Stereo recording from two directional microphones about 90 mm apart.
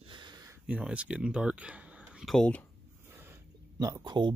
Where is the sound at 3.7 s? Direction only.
45° right (ahead or behind).